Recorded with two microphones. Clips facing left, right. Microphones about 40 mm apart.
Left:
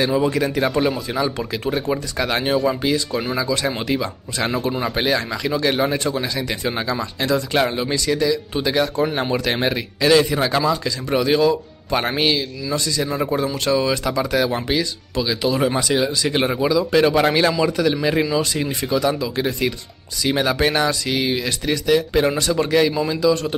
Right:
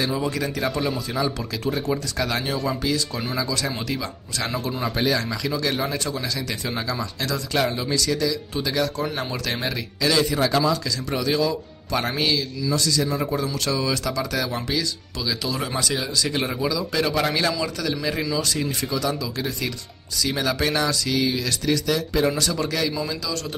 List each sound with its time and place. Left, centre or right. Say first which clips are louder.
0.0 s speech: left 6 dB; left
1.6 s speech: left 2 dB; left
2.6 s speech: left 5 dB; left